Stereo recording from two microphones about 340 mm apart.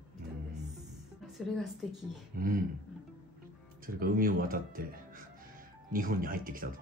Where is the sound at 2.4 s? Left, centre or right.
Right.